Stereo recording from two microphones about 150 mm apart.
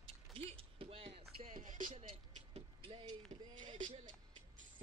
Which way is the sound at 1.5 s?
60° right (ahead or behind).